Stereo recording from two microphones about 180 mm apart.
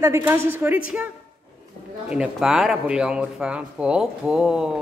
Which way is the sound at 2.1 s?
5° right (ahead or behind).